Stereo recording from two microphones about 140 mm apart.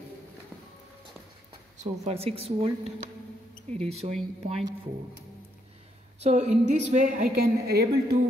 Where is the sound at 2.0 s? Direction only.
45° right (ahead or behind).